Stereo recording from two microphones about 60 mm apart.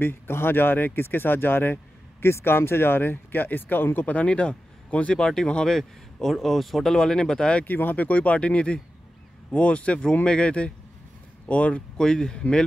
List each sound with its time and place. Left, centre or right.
0.0 s speech: left; by 7.6 s centre
7.6 s speech: left
12.0 s speech: centre